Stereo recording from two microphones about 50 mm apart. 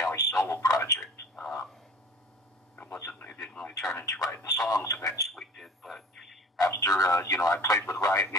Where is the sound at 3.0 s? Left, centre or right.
Left.